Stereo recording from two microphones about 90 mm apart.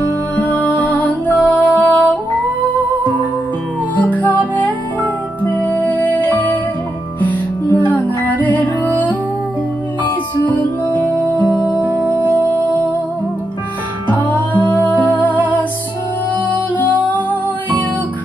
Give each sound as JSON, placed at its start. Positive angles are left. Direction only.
{"t": 0.4, "sound": "music", "side_deg": 20}
{"t": 14.1, "sound": "music", "side_deg": 20}